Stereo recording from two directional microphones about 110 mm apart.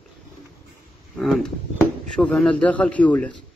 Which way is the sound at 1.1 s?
5° left (ahead or behind).